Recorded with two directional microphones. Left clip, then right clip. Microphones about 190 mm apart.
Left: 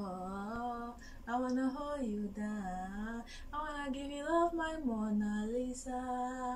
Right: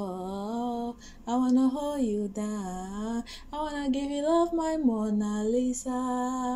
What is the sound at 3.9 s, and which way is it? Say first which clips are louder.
Music: right 11 dB; 20° right (ahead or behind).